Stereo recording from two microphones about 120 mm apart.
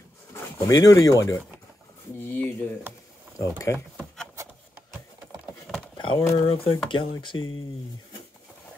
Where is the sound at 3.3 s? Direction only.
25° left (ahead or behind).